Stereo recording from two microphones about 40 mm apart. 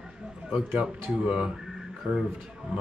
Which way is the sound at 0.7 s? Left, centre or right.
Right.